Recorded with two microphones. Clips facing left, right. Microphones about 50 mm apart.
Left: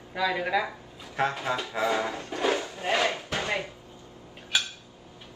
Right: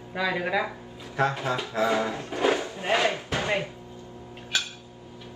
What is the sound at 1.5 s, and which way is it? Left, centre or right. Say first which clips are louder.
Speech: right 1 dB; centre.